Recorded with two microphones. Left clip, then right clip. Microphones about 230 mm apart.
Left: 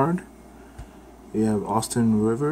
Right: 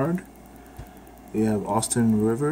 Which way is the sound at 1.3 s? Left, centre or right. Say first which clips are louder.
Even; centre.